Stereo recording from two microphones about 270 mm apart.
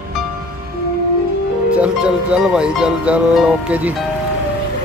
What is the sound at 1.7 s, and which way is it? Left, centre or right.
Speech, centre.